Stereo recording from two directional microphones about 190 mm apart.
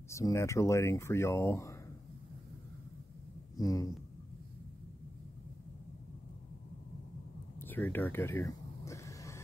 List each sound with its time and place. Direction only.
0.1 s speech: 15° left (ahead or behind)
3.5 s speech: 20° left (ahead or behind)
7.5 s a sound: 10° left (ahead or behind)